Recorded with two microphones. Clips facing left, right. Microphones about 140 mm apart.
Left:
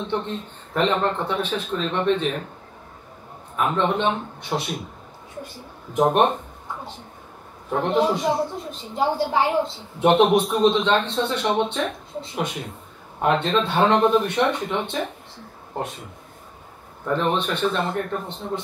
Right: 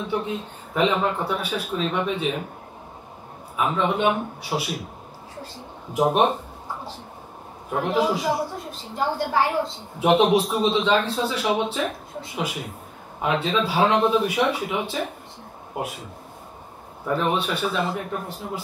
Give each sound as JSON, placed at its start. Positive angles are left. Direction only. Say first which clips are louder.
{"t": 0.0, "sound": "speech", "louder": "even", "side_deg": -5}
{"t": 3.5, "sound": "a man's voice", "louder": "left 1 dB", "side_deg": -5}
{"t": 5.9, "sound": "a sound", "louder": "left 1 dB", "side_deg": -5}
{"t": 7.7, "sound": "a man's voice", "louder": "left 2 dB", "side_deg": -5}
{"t": 9.2, "sound": "a woman's voice", "louder": "even", "side_deg": 20}
{"t": 9.9, "sound": "a man's voice", "louder": "left 1 dB", "side_deg": 0}
{"t": 17.0, "sound": "a man's voice", "louder": "left 1 dB", "side_deg": -5}